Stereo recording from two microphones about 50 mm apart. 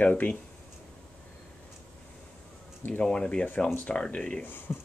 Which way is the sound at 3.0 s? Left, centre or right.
Centre.